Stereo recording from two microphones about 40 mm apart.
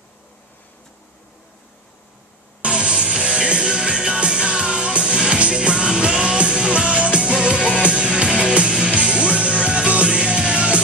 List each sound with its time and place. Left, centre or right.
2.6 s music: right